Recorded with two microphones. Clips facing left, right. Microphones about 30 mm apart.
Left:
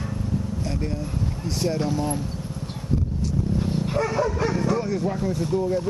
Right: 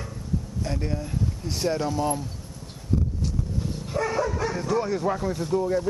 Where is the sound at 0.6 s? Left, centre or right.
Centre.